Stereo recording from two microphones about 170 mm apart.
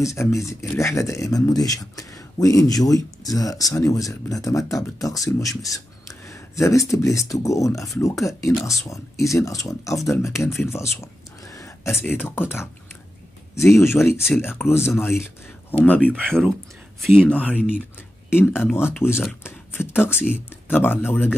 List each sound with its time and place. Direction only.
0.0 s speech: 15° left (ahead or behind)
18.7 s speech: 10° left (ahead or behind)
19.4 s a sound: 15° left (ahead or behind)
20.6 s speech: 10° left (ahead or behind)